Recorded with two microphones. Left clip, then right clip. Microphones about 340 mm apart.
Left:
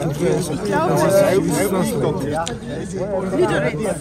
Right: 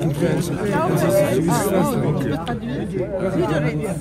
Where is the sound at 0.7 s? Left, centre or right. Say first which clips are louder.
Left 3 dB; left.